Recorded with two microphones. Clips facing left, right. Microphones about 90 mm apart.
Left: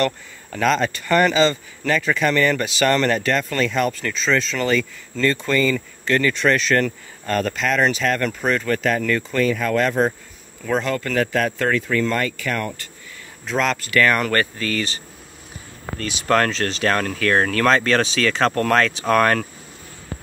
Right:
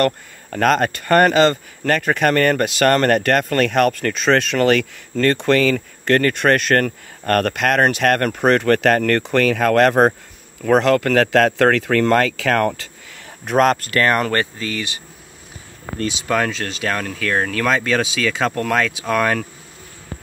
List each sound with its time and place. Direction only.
0.0 s speech: 50° right (ahead or behind); by 12.7 s 85° right
13.5 s speech: 50° right (ahead or behind); by 15.0 s 15° right (ahead or behind)
16.3 s speech: 5° right (ahead or behind)